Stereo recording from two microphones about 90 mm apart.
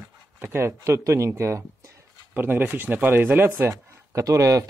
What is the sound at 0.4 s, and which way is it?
Speech, 25° right (ahead or behind).